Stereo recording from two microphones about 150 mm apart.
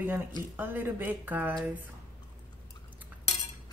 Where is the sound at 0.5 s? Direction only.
15° right (ahead or behind).